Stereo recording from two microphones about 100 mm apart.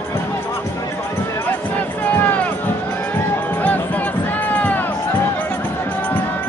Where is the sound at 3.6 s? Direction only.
15° left (ahead or behind).